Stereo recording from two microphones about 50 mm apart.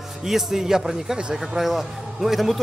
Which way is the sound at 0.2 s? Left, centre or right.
Centre.